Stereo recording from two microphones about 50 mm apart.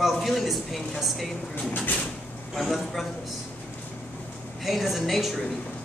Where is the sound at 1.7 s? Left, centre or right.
Left.